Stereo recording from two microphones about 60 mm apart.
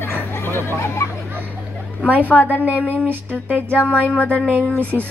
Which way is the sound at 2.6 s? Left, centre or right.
Right.